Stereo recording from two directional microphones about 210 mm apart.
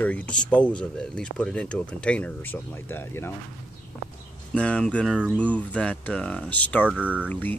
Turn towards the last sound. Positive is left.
turn(degrees=10)  # may be behind; listen again after turning